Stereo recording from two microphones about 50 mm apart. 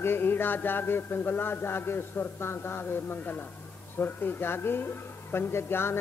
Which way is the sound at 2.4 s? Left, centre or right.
Left.